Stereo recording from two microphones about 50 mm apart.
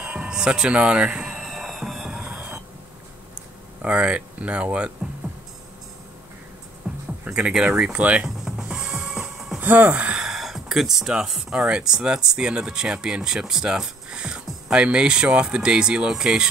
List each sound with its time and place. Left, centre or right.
0.0 s speech: right
1.2 s a sound: centre
3.8 s speech: right
6.8 s music: right
7.2 s speech: centre
8.7 s music: centre
9.6 s speech: right
10.1 s gasp: centre
11.5 s speech: right